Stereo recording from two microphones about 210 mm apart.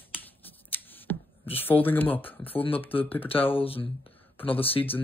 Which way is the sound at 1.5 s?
10° left (ahead or behind).